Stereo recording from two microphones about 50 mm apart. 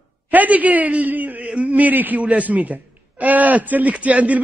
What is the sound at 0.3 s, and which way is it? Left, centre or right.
A man's voice, right.